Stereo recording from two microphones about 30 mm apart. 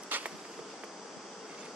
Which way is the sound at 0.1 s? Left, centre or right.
Right.